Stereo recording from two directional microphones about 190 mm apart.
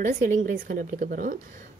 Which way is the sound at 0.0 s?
45° right (ahead or behind).